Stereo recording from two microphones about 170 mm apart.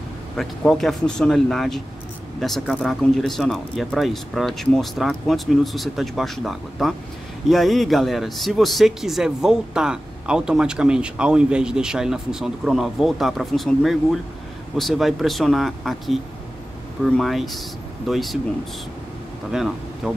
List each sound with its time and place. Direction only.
0.4 s speech: centre (ahead or behind)
19.5 s speech: 5° right (ahead or behind)